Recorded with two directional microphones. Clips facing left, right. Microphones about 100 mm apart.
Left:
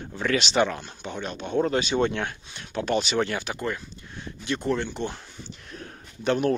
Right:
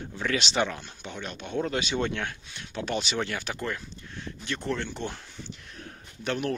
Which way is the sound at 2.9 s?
50° left (ahead or behind).